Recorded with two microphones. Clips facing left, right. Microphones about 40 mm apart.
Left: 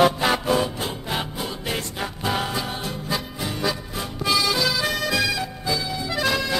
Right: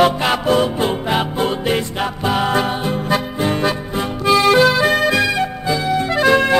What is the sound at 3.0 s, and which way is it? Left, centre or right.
Music, right.